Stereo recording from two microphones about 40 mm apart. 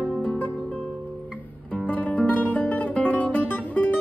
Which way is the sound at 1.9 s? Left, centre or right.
Left.